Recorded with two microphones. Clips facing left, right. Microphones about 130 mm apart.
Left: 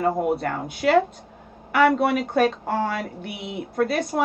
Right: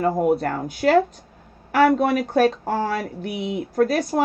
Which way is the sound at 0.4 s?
40° right (ahead or behind).